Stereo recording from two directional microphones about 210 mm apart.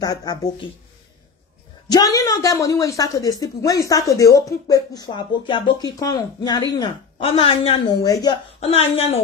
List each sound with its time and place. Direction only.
0.0 s a woman's voice: 20° left (ahead or behind)
1.9 s a woman's voice: 15° left (ahead or behind)